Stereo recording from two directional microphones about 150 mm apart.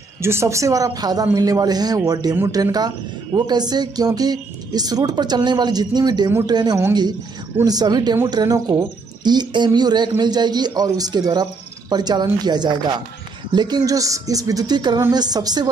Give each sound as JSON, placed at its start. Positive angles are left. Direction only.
{"t": 0.2, "sound": "speech", "side_deg": -15}